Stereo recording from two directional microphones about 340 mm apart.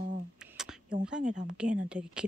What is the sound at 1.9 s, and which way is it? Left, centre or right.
Speech, centre.